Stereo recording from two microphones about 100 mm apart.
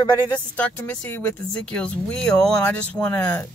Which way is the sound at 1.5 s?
10° left (ahead or behind).